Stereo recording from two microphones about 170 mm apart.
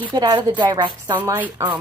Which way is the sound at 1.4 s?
10° right (ahead or behind).